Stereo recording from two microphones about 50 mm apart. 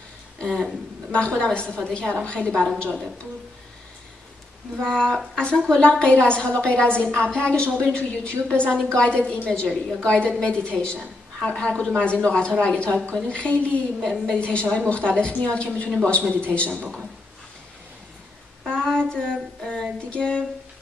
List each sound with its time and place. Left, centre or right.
0.4 s speech: centre
4.8 s speech: centre
18.7 s child singing: centre
20.1 s speech: centre